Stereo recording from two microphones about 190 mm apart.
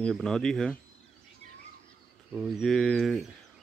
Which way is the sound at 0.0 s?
5° left (ahead or behind).